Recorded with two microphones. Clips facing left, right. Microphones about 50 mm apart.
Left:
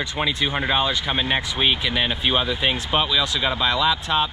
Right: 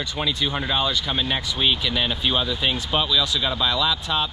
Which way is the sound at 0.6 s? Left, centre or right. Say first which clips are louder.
Left 2 dB; left.